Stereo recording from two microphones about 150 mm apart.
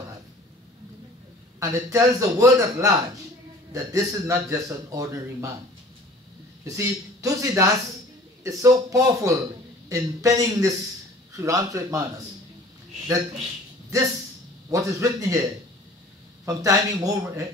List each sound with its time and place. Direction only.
1.6 s speech: 20° right (ahead or behind)
6.6 s speech: 20° right (ahead or behind)
14.7 s speech: 20° right (ahead or behind)
16.4 s speech: 25° right (ahead or behind)